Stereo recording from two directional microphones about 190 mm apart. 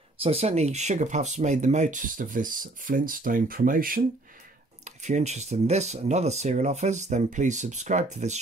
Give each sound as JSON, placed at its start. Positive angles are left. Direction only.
{"t": 0.2, "sound": "speech", "side_deg": -30}